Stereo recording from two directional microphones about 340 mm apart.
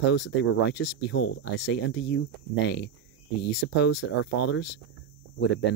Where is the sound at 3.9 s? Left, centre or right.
Left.